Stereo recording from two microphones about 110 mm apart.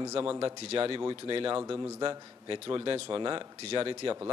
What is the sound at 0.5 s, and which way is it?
A man's voice, 60° right (ahead or behind).